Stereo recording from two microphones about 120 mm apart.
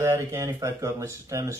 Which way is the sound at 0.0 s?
25° right (ahead or behind).